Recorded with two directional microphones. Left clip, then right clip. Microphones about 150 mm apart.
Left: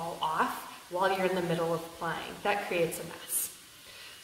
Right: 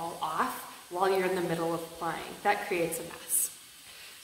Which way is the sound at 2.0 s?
20° right (ahead or behind).